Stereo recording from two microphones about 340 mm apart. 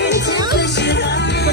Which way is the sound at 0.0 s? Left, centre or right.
Left.